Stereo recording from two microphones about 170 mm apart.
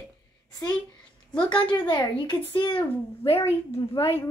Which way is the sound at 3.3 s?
15° left (ahead or behind).